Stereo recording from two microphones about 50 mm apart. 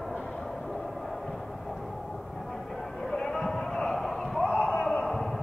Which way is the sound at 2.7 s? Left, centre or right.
Centre.